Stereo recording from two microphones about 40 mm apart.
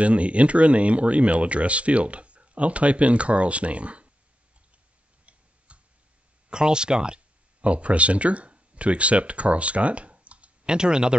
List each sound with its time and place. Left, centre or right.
0.0 s speech: right
5.7 s tick-tock: right
6.5 s speech: right
7.6 s speech: right